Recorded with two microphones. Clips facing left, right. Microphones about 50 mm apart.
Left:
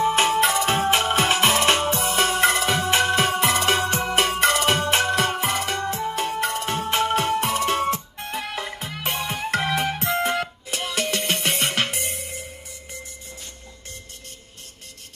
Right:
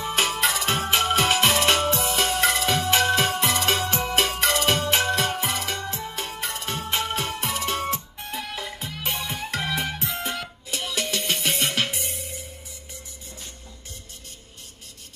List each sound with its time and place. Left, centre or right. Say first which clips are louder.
0.0 s music: left 5 dB; left